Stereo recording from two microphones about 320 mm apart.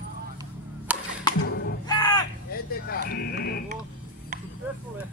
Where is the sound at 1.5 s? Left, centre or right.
Left.